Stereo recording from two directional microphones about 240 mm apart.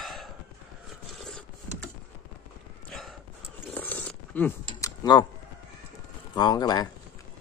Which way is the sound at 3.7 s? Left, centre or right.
Centre.